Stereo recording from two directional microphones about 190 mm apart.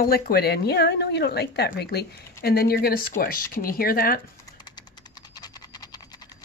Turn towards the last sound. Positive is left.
turn(degrees=20)  # may be behind; listen again after turning